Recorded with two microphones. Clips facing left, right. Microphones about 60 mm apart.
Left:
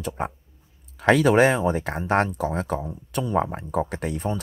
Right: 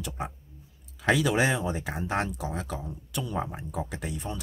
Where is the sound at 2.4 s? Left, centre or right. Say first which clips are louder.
Left 8 dB; left.